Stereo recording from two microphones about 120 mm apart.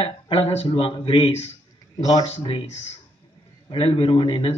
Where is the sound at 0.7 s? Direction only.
50° left (ahead or behind).